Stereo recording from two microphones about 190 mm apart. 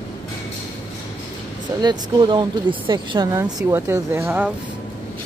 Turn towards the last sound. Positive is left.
turn(degrees=-10)  # may be behind; listen again after turning